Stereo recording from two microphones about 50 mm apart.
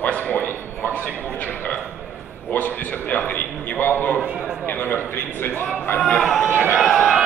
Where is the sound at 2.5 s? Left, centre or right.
Left.